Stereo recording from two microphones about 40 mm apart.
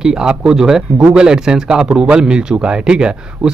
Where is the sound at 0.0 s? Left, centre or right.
Centre.